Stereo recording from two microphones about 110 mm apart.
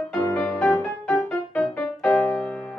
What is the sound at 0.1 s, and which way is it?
Music, 20° left (ahead or behind).